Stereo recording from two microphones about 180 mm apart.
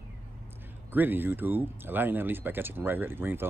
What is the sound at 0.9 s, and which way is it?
Speech, 10° right (ahead or behind).